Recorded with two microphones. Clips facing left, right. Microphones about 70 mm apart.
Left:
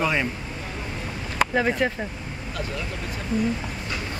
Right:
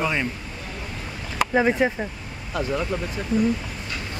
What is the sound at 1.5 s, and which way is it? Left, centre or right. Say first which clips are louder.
Speech: right 5 dB; centre.